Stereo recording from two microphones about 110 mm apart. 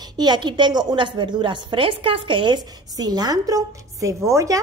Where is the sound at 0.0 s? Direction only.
40° right (ahead or behind).